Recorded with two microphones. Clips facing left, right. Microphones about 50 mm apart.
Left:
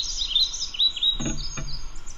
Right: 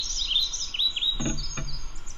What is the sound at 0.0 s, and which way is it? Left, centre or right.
Chirp, right.